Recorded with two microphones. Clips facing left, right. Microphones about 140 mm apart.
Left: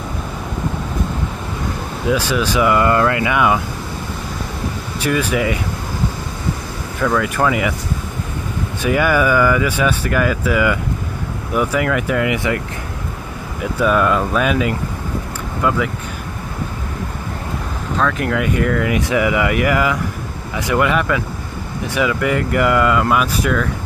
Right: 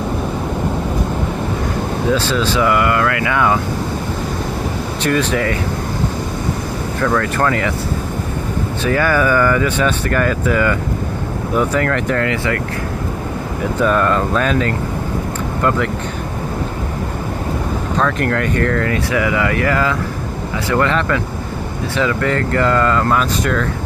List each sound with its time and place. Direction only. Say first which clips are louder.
2.1 s speech: right 1 dB; 15° left (ahead or behind)
5.0 s speech: right 1 dB; 10° left (ahead or behind)
7.0 s speech: even; 10° left (ahead or behind)
8.8 s speech: even; 15° left (ahead or behind)
13.7 s speech: even; 5° left (ahead or behind)
17.9 s speech: even; centre (ahead or behind)